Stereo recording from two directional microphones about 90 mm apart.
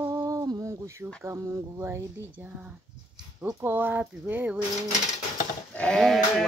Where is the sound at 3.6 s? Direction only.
25° right (ahead or behind).